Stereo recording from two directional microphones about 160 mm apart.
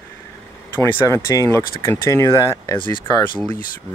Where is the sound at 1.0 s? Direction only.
20° left (ahead or behind).